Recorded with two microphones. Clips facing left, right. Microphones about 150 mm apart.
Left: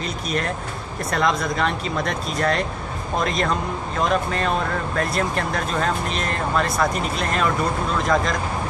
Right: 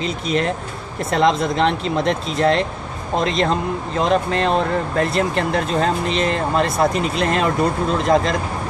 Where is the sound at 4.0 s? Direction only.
25° right (ahead or behind).